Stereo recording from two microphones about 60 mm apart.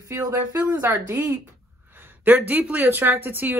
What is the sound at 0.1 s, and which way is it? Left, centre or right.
Speech, right.